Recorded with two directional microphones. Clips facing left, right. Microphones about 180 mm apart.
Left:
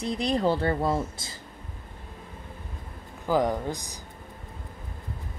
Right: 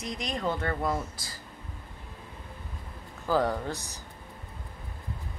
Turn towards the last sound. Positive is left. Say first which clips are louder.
# left 3 dB
turn(degrees=15)  # may be behind; listen again after turning